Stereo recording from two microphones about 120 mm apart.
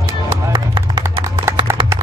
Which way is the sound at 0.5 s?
40° right (ahead or behind).